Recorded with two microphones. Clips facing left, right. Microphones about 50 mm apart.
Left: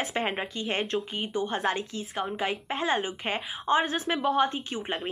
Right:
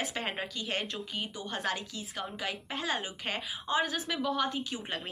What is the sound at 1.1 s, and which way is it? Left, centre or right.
A woman's voice, left.